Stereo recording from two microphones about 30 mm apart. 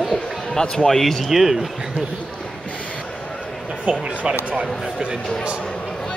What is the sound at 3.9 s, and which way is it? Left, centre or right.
Speech, right.